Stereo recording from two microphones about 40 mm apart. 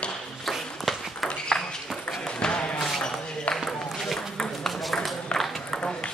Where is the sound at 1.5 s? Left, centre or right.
Centre.